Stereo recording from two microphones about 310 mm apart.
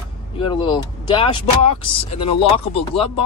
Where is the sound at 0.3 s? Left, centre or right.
Centre.